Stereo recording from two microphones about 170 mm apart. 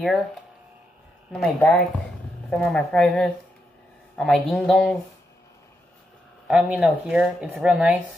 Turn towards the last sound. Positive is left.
turn(degrees=-5)  # may be behind; listen again after turning